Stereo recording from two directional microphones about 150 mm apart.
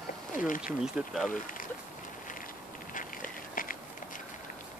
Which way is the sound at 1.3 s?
65° left (ahead or behind).